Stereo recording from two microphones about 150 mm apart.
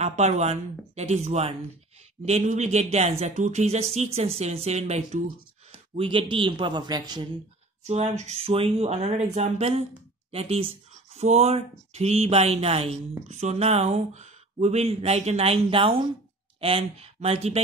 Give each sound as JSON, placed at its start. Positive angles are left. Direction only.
{"t": 0.0, "sound": "speech", "side_deg": -50}
{"t": 5.9, "sound": "a man's voice", "side_deg": -35}
{"t": 7.8, "sound": "speech", "side_deg": -50}